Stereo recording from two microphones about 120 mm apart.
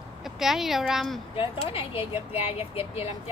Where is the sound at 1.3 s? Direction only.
50° left (ahead or behind).